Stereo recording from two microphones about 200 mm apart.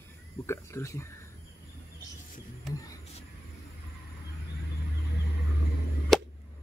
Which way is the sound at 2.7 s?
15° left (ahead or behind).